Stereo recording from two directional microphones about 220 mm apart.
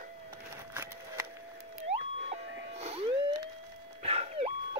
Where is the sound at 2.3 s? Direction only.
30° right (ahead or behind).